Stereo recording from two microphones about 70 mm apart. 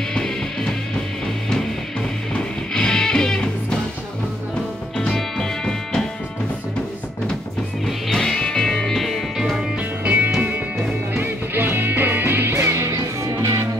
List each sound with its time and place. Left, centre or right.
0.1 s music: centre
2.3 s music: centre
4.9 s music: centre
8.1 s music: centre
10.0 s music: right